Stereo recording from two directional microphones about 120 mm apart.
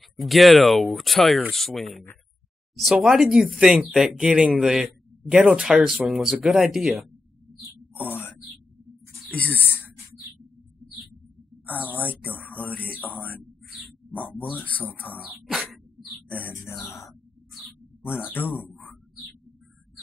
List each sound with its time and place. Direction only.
0.2 s speech: centre (ahead or behind)
9.3 s speech: 15° left (ahead or behind)
11.6 s speech: 15° left (ahead or behind)
16.3 s music: 20° left (ahead or behind)
18.0 s speech: 20° left (ahead or behind)